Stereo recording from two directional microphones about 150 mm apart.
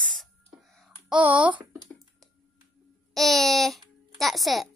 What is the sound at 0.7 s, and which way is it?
A child's voice, 5° right (ahead or behind).